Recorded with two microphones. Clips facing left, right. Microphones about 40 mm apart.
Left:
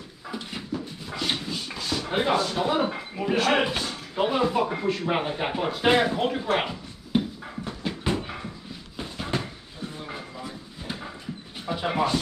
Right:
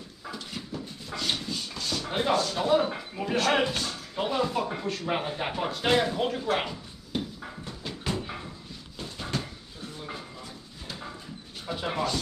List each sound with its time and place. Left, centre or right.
0.3 s dog: centre
3.5 s speech: centre
8.9 s a sound: centre
11.6 s speech: centre